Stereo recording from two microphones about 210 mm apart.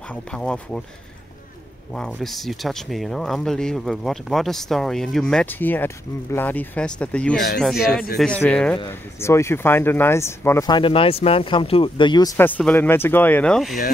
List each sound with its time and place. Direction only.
0.1 s speech: 5° left (ahead or behind)
2.0 s speech: centre (ahead or behind)
8.7 s speech: 15° left (ahead or behind)
12.4 s speech: 10° left (ahead or behind)